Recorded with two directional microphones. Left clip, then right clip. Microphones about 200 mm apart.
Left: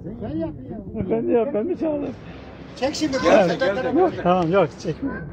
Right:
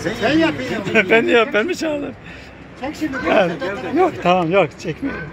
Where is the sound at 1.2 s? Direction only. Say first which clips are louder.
Right 5 dB; 5° right (ahead or behind).